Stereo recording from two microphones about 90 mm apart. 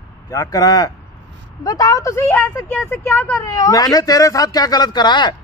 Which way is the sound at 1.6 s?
40° left (ahead or behind).